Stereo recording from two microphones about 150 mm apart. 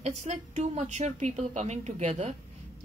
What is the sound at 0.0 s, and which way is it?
Speech, 45° right (ahead or behind).